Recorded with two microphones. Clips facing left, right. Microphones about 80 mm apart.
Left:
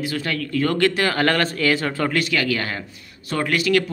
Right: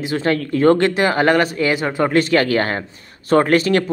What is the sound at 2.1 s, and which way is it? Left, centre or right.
Speech, right.